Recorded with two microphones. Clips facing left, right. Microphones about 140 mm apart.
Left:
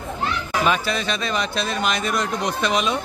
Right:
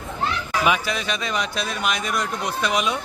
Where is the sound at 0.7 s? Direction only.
10° right (ahead or behind).